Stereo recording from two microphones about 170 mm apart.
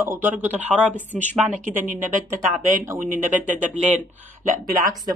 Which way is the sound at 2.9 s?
50° right (ahead or behind).